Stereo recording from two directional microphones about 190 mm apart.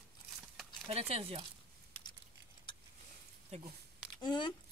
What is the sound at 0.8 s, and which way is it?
Speech, 30° right (ahead or behind).